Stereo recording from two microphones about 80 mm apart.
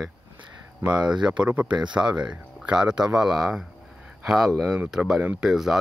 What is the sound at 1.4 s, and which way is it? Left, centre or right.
Speech, centre.